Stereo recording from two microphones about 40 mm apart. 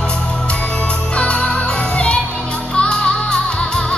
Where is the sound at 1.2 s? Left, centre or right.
Left.